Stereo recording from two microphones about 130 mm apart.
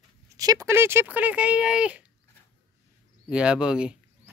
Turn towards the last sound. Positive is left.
turn(degrees=-5)  # may be behind; listen again after turning